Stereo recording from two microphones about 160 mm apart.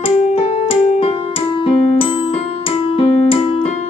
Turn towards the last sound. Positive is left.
turn(degrees=35)  # may be behind; listen again after turning